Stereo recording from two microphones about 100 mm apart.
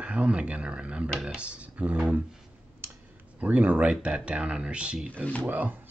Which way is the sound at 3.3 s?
15° right (ahead or behind).